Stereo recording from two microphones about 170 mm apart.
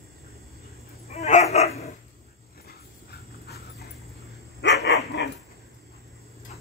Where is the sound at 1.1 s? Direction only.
40° left (ahead or behind).